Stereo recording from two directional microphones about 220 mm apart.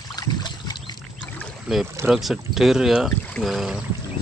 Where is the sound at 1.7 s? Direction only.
Centre (ahead or behind).